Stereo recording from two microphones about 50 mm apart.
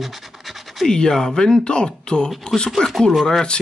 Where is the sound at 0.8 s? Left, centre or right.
Centre.